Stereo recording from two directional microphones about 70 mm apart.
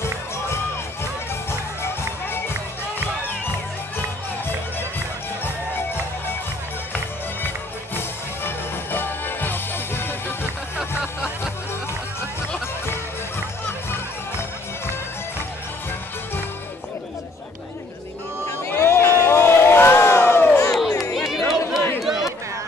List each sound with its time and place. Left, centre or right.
1.5 s music: left
8.9 s music: left
18.7 s crowd: left
21.3 s chatter: centre
22.0 s a sound: centre